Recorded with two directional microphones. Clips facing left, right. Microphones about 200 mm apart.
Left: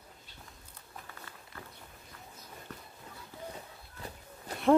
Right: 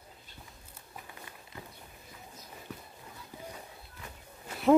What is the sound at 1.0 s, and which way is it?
Walk, 15° right (ahead or behind).